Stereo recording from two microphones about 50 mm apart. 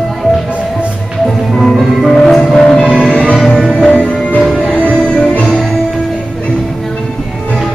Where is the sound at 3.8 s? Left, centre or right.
Left.